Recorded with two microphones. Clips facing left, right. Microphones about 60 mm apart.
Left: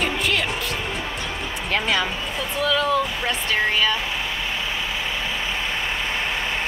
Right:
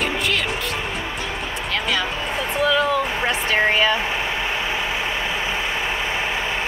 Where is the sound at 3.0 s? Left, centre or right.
Right.